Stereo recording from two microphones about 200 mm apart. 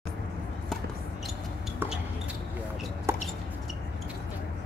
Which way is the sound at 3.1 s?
15° right (ahead or behind).